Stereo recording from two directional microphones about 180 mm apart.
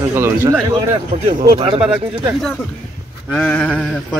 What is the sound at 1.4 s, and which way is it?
Speech, 25° right (ahead or behind).